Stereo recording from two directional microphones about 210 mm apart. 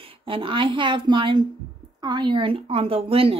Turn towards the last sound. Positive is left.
turn(degrees=-25)  # may be behind; listen again after turning